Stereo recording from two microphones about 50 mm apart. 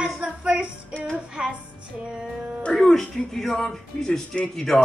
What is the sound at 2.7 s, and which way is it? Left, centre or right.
Speech, centre.